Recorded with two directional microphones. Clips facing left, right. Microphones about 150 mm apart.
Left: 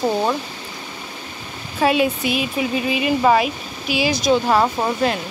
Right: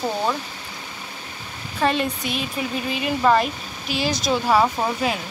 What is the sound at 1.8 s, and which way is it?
Speech, 5° left (ahead or behind).